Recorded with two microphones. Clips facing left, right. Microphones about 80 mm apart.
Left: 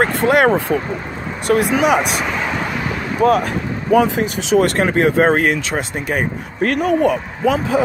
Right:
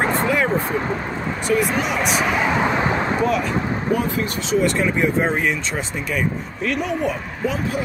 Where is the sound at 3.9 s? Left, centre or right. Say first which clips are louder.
Left 10 dB; left.